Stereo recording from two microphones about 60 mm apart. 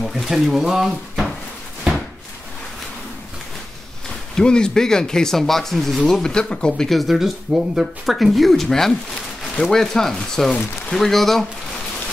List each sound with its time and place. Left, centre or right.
0.0 s speech: centre
1.9 s a sound: centre
4.4 s speech: centre
6.9 s speech: centre